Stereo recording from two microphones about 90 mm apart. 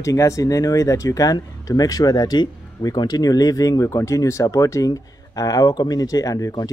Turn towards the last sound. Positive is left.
turn(degrees=40)  # may be behind; listen again after turning